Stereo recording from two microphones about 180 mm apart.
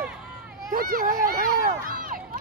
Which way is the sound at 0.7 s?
50° right (ahead or behind).